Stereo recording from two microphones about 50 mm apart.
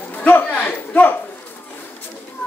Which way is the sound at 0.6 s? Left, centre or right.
Left.